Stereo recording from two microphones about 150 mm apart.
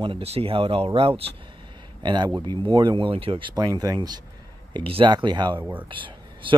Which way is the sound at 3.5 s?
25° right (ahead or behind).